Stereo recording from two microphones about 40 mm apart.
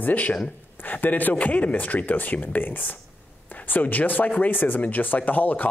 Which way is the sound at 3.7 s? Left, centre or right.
Left.